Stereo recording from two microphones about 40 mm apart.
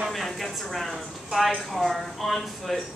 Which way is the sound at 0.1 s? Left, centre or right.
Centre.